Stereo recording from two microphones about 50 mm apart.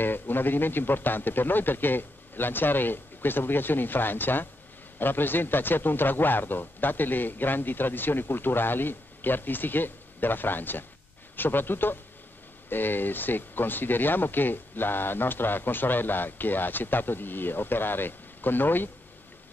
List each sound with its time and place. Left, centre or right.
0.0 s speech: left